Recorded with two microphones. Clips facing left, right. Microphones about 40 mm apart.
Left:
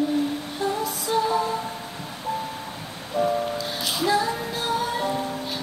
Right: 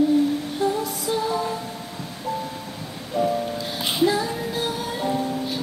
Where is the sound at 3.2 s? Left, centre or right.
Centre.